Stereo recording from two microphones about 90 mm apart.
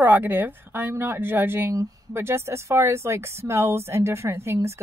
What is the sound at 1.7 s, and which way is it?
Speech, 35° right (ahead or behind).